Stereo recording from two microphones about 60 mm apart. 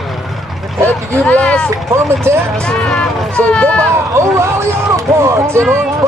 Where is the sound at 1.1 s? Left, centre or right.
Centre.